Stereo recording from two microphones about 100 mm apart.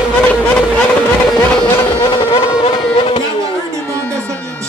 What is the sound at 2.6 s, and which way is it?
Music, 65° left (ahead or behind).